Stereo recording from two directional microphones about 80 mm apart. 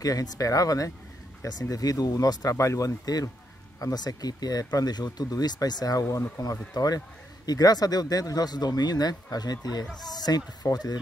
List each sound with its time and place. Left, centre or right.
0.0 s speech: left
6.0 s speech: left
6.7 s speech: left